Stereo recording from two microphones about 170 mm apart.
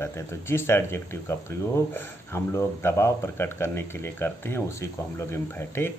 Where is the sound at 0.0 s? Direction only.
15° left (ahead or behind).